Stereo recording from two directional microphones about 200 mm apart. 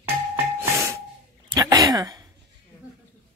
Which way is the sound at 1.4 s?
20° right (ahead or behind).